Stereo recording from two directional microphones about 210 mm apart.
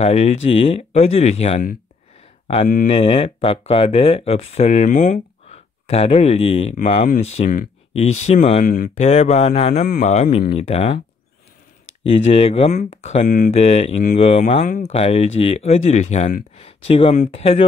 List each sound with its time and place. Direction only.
0.0 s speech: 30° left (ahead or behind)
12.0 s speech: 25° left (ahead or behind)